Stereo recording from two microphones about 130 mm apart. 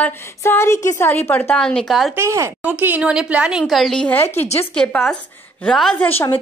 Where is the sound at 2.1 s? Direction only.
20° right (ahead or behind); by 6.0 s 5° left (ahead or behind).